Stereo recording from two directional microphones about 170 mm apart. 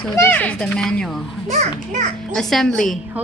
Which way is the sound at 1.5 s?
40° right (ahead or behind).